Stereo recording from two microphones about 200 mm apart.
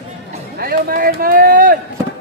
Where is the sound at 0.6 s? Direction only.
50° right (ahead or behind).